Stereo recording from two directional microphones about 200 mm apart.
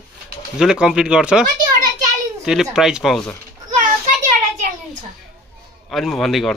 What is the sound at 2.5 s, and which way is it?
Speech, centre (ahead or behind).